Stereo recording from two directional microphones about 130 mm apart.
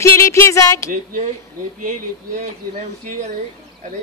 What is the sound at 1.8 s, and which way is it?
Speech, 90° right.